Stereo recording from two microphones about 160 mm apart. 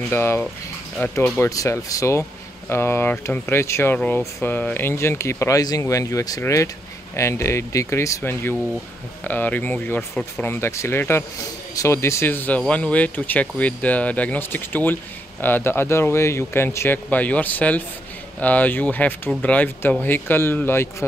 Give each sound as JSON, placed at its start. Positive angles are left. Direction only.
{"t": 0.1, "sound": "speech", "side_deg": 15}